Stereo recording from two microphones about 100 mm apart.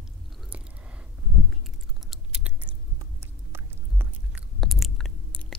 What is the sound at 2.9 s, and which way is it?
Chewing, 25° right (ahead or behind).